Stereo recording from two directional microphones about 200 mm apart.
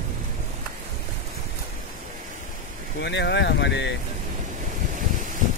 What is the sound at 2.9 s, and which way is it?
Speech, 60° left (ahead or behind).